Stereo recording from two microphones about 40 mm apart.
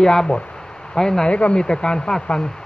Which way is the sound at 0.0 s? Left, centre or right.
Centre.